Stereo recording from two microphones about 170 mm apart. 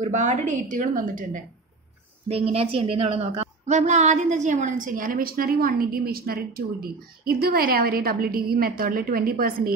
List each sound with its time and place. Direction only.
0.0 s a woman's voice: 45° right (ahead or behind)
2.2 s a woman's voice: 35° right (ahead or behind); by 9.8 s 60° right (ahead or behind)